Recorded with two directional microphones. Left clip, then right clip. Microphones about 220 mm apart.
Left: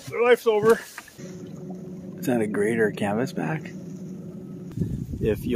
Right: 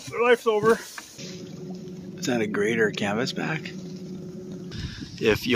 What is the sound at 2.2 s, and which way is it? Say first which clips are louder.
Speech: left 1 dB; 10° left (ahead or behind).